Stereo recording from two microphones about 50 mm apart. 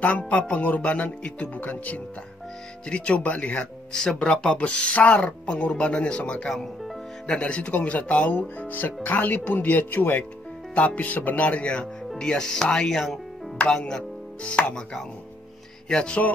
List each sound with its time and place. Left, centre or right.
0.3 s speech: left
3.9 s speech: centre
6.5 s speech: centre
7.2 s speech: left
11.4 s speech: left
15.9 s speech: centre